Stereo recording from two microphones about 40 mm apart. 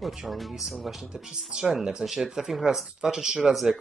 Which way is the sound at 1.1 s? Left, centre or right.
Right.